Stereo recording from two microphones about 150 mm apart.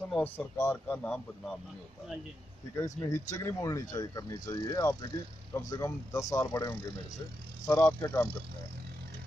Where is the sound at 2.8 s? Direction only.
20° left (ahead or behind).